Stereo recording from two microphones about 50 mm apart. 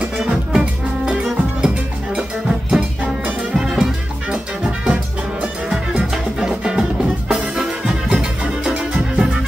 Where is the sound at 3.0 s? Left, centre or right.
Right.